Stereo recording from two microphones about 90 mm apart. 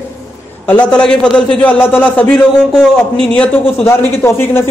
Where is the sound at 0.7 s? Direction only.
15° left (ahead or behind).